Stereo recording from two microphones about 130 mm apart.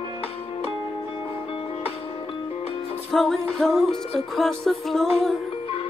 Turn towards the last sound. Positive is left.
turn(degrees=0)  # may be behind; listen again after turning